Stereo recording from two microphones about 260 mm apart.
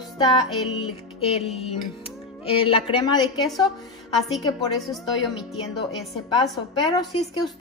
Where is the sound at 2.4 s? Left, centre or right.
Left.